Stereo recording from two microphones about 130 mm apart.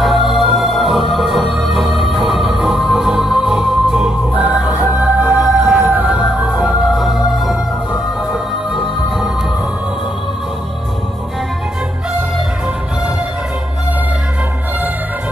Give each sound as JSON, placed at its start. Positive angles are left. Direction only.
{"t": 0.0, "sound": "music", "side_deg": 0}